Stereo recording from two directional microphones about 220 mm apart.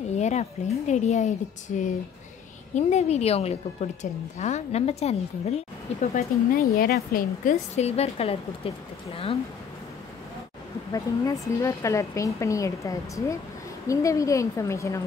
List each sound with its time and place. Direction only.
0.1 s a woman's voice: 30° left (ahead or behind)
10.9 s a woman's voice: 15° left (ahead or behind)